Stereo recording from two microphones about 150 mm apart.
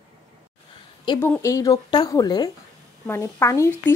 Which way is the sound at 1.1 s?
15° left (ahead or behind).